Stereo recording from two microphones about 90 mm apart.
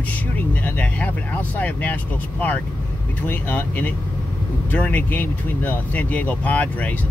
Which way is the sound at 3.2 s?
20° left (ahead or behind).